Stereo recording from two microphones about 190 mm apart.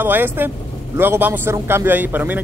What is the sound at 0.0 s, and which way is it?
A man's voice, 10° right (ahead or behind).